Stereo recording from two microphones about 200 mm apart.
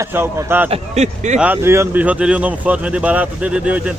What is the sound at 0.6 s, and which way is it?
Speech, 35° right (ahead or behind).